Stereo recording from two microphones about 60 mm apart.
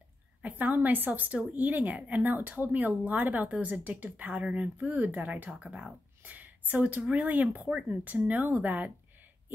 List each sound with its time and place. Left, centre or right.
0.4 s a woman's voice: right
5.5 s speech: centre
6.2 s a woman's voice: right